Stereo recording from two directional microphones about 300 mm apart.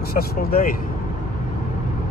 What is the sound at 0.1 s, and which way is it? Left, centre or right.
Speech, left.